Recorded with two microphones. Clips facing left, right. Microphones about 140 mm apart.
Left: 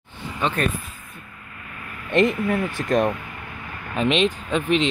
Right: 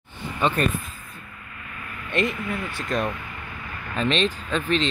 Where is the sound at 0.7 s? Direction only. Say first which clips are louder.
Right 1 dB; 10° left (ahead or behind).